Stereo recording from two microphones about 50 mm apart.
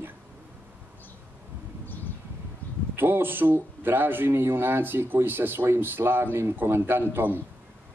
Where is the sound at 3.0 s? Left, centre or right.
Right.